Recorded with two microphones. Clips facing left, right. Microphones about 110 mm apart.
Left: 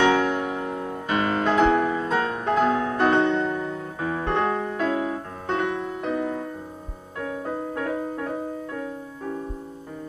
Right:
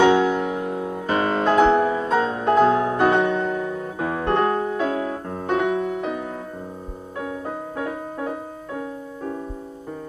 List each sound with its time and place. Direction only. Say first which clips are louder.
0.2 s music: right 3 dB; 5° right (ahead or behind)
1.0 s music: right 2 dB; 35° right (ahead or behind)
1.4 s music: right 3 dB; 15° right (ahead or behind)
2.0 s music: right 4 dB; 5° right (ahead or behind)
2.6 s music: right 4 dB; 25° right (ahead or behind)
3.0 s music: right 1 dB; 10° right (ahead or behind)